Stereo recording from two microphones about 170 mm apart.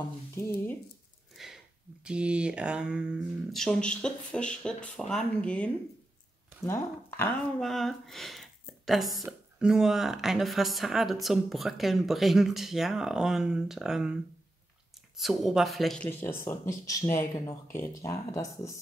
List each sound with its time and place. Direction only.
1.3 s a sound: centre (ahead or behind)
2.0 s speech: 5° right (ahead or behind); by 7.3 s 15° left (ahead or behind)
7.6 s a woman's voice: centre (ahead or behind)
15.1 s speech: centre (ahead or behind)
16.1 s speech: 15° left (ahead or behind)